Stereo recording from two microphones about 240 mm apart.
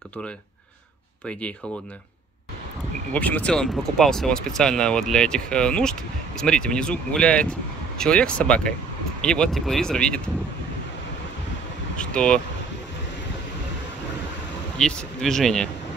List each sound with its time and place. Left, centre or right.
3.1 s speech: centre
12.0 s speech: centre
14.8 s speech: centre